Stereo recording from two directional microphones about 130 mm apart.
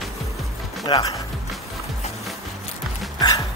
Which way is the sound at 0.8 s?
30° left (ahead or behind).